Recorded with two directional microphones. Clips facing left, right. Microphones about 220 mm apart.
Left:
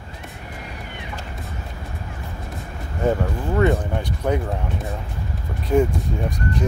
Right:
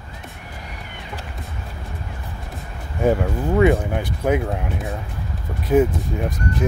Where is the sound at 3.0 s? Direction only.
10° right (ahead or behind).